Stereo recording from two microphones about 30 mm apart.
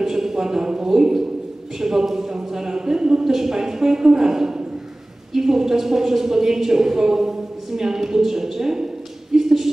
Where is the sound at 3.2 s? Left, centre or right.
Centre.